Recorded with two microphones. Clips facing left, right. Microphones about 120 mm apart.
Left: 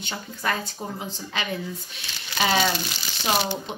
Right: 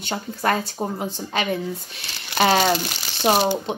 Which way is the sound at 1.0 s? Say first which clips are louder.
Right 6 dB; 50° right (ahead or behind).